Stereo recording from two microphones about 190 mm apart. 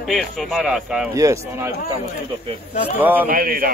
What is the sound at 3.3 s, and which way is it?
Speech, 50° right (ahead or behind).